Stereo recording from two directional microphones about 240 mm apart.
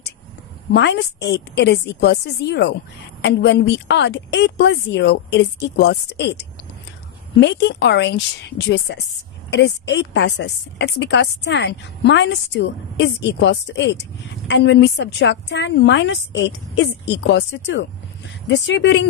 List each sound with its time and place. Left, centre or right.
0.7 s a woman's voice: left